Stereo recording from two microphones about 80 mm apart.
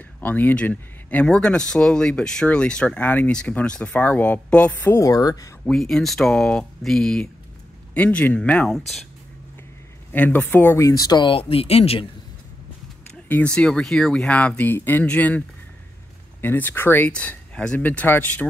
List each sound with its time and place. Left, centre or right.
0.2 s speech: left
1.2 s speech: centre
4.9 s speech: left
5.7 s speech: centre
8.6 s speech: centre
10.1 s speech: left
10.8 s speech: left
13.3 s speech: centre
17.1 s speech: centre